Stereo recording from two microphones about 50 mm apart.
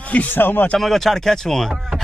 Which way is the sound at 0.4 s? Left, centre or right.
Left.